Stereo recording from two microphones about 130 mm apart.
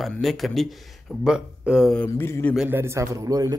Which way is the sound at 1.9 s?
15° left (ahead or behind).